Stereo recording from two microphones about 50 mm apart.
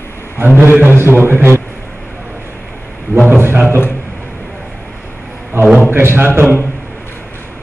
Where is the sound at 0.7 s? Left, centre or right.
Right.